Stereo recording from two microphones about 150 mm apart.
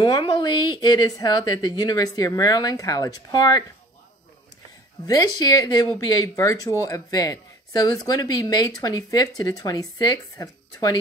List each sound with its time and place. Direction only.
0.0 s speech: 30° left (ahead or behind)
5.0 s speech: 25° left (ahead or behind)